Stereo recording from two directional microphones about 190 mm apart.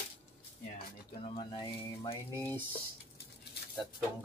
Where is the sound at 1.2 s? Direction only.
25° left (ahead or behind); by 2.7 s 10° left (ahead or behind).